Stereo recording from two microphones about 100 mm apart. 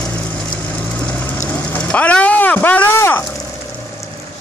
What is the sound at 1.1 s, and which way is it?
Vehicle, 20° left (ahead or behind).